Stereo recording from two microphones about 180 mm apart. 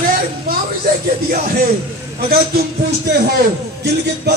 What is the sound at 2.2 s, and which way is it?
Speech, 55° right (ahead or behind).